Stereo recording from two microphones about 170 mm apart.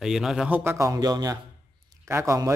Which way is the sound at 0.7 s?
20° right (ahead or behind).